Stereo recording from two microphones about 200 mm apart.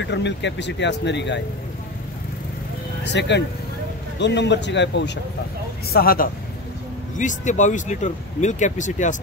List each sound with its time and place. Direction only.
0.0 s speech: 60° left (ahead or behind)
3.0 s speech: 60° left (ahead or behind)
5.9 s a man's voice: 50° left (ahead or behind)
7.2 s speech: 40° left (ahead or behind)